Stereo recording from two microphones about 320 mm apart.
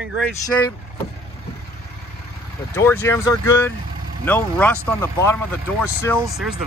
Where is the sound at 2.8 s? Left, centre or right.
Centre.